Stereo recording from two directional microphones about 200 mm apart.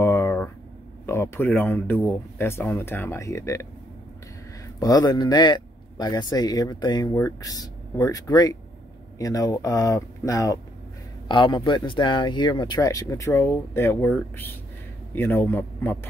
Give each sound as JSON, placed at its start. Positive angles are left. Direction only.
{"t": 0.0, "sound": "a sound", "side_deg": 10}
{"t": 1.0, "sound": "speech", "side_deg": 10}
{"t": 4.7, "sound": "speech", "side_deg": 20}